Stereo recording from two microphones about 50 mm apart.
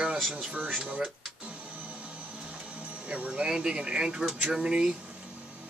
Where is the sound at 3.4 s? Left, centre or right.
Centre.